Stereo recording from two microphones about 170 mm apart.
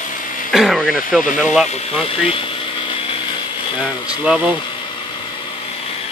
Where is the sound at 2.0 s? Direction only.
30° left (ahead or behind).